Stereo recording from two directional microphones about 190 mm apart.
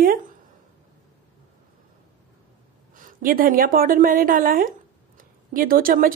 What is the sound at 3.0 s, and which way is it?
A woman's voice, 45° right (ahead or behind).